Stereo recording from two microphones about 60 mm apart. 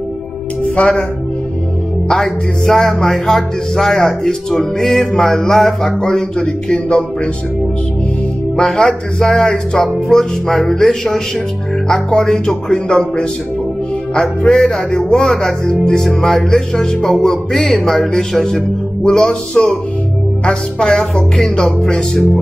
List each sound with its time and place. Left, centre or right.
0.8 s speech: left
2.0 s music: centre
8.6 s music: centre
11.9 s speech: centre
16.1 s music: centre
19.0 s speech: centre